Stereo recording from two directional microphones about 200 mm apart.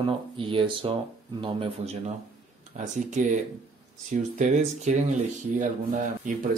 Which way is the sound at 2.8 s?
40° right (ahead or behind).